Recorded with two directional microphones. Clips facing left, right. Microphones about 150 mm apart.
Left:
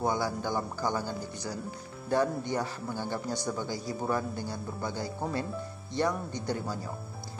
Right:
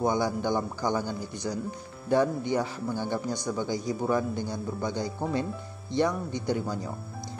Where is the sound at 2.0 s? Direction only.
15° right (ahead or behind).